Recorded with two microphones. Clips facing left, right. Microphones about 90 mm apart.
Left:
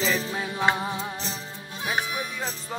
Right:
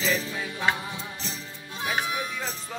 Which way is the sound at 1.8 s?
20° left (ahead or behind).